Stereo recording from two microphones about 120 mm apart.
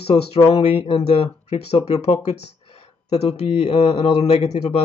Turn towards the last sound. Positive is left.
turn(degrees=60)  # may be behind; listen again after turning